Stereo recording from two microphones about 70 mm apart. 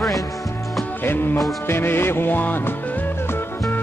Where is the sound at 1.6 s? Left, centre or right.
Left.